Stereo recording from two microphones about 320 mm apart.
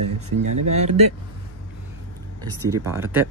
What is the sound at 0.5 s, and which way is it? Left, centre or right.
Speech, right.